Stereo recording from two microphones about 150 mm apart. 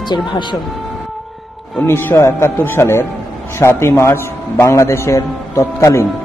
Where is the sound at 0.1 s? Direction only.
30° left (ahead or behind).